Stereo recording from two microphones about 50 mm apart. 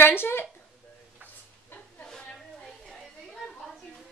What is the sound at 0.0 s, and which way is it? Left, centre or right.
Speech, left.